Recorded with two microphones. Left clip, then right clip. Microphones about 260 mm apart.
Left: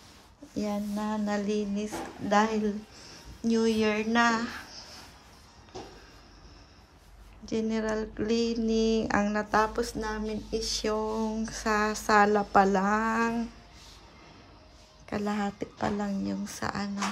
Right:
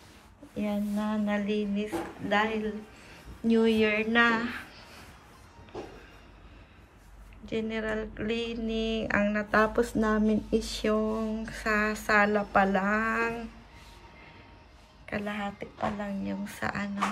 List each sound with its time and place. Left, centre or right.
0.7 s speech: centre
7.4 s speech: centre
9.8 s speech: centre
15.0 s speech: centre
15.4 s speech: left
16.3 s speech: centre